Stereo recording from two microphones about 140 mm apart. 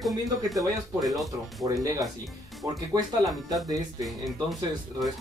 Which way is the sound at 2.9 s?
25° right (ahead or behind).